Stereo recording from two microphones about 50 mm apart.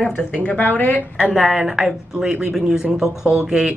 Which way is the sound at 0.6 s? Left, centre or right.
Left.